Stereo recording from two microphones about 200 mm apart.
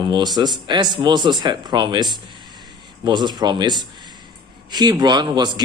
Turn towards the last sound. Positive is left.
turn(degrees=-20)  # may be behind; listen again after turning